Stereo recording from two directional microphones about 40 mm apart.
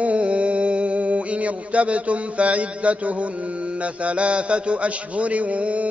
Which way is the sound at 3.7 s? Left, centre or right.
Right.